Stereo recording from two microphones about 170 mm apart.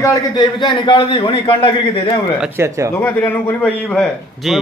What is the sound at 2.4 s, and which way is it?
Speech, 15° right (ahead or behind).